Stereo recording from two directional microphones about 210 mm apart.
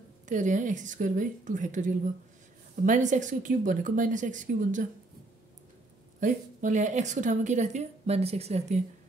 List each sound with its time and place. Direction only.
0.3 s a woman's voice: 35° right (ahead or behind)
6.1 s a woman's voice: 35° right (ahead or behind)